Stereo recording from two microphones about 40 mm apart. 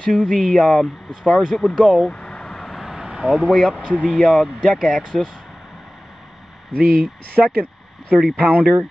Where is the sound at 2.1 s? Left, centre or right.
Left.